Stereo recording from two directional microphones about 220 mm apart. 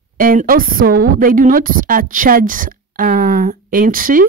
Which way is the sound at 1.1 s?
40° right (ahead or behind).